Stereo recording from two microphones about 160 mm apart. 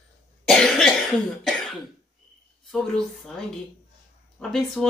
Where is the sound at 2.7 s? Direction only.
Centre (ahead or behind).